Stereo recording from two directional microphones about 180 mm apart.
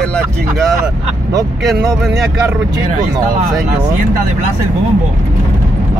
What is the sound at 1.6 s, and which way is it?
Speech, centre (ahead or behind).